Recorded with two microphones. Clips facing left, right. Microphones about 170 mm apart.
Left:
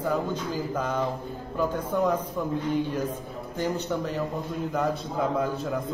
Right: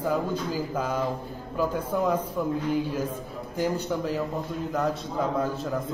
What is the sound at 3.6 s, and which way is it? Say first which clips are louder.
A man's voice: right 1 dB; 5° right (ahead or behind).